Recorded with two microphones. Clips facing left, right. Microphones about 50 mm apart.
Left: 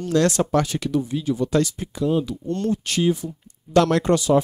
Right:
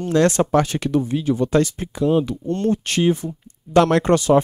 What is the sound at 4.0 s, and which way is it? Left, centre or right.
Speech, right.